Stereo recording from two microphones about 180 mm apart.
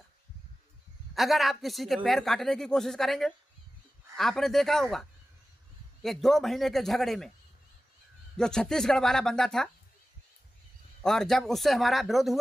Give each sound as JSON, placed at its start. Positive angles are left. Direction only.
{"t": 1.1, "sound": "speech", "side_deg": 0}
{"t": 6.0, "sound": "speech", "side_deg": 0}
{"t": 8.4, "sound": "speech", "side_deg": 5}
{"t": 11.0, "sound": "speech", "side_deg": 0}